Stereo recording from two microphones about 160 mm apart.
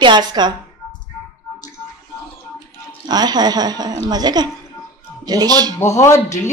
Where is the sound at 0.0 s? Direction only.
25° right (ahead or behind).